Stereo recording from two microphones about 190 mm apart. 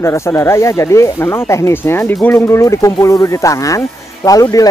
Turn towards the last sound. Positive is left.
turn(degrees=20)  # may be behind; listen again after turning